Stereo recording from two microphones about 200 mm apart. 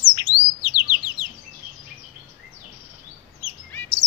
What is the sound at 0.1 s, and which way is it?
Bird, 20° left (ahead or behind).